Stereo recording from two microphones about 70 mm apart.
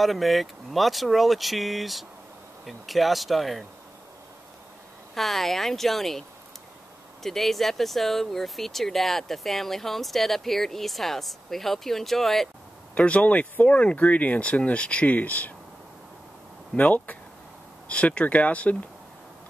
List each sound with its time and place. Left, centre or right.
0.0 s speech: centre
5.1 s speech: centre
7.2 s speech: centre
12.9 s speech: centre
16.7 s speech: left